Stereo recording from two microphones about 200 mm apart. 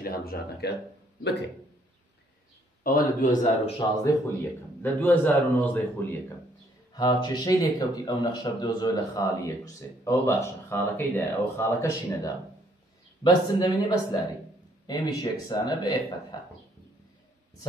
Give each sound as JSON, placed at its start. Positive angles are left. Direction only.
{"t": 0.0, "sound": "speech", "side_deg": 50}
{"t": 2.8, "sound": "a man's voice", "side_deg": 45}
{"t": 4.0, "sound": "speech", "side_deg": 15}
{"t": 6.9, "sound": "speech", "side_deg": 20}
{"t": 14.9, "sound": "speech", "side_deg": 20}